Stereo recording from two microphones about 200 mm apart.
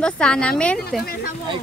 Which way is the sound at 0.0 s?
5° left (ahead or behind).